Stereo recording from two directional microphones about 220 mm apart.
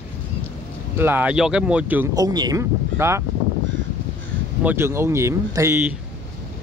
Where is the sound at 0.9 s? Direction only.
10° right (ahead or behind).